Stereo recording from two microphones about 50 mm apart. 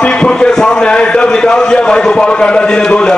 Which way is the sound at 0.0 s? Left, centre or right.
Centre.